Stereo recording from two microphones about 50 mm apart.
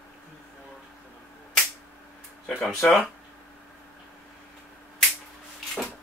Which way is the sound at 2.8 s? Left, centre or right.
Left.